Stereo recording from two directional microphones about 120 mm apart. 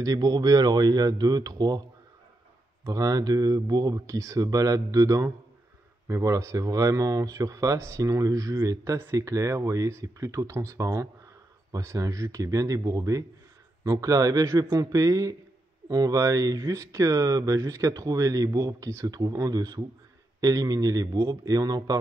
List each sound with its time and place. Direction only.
0.0 s speech: 35° right (ahead or behind)
2.8 s speech: 30° right (ahead or behind)